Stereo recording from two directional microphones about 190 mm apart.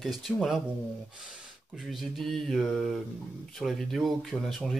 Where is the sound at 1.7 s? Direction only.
Centre (ahead or behind).